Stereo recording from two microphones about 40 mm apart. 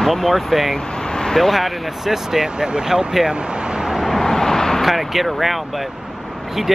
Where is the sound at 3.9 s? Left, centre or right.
Centre.